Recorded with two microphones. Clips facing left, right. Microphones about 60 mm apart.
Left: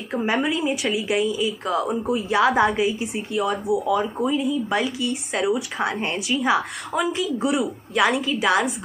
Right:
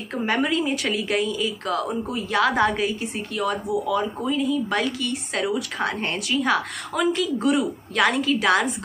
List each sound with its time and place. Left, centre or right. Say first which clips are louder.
0.1 s a woman's voice: even; centre
1.7 s speech: left 4 dB; centre
2.5 s a woman's voice: left 2 dB; centre